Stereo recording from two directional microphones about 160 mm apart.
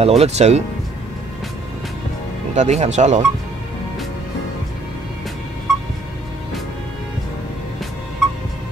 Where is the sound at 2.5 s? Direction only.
45° right (ahead or behind).